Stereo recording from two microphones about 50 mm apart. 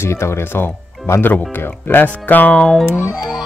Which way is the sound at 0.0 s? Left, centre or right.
Left.